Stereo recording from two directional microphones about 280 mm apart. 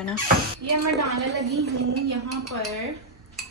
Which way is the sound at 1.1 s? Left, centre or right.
Right.